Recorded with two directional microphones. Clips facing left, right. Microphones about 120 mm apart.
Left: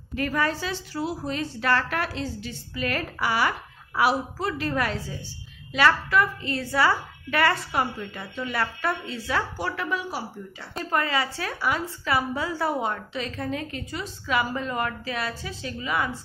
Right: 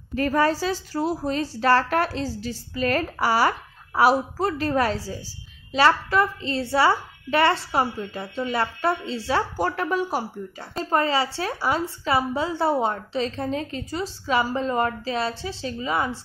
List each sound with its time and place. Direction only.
0.1 s a woman's voice: 35° right (ahead or behind)
9.6 s speech: 45° right (ahead or behind)
10.8 s a woman's voice: 30° right (ahead or behind)